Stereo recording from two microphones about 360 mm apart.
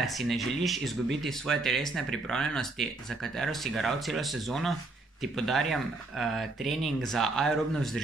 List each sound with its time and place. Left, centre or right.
0.0 s speech: centre